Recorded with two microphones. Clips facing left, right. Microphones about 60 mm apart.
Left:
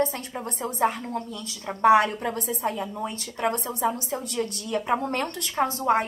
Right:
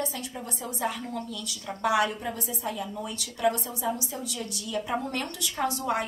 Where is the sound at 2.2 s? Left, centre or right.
Left.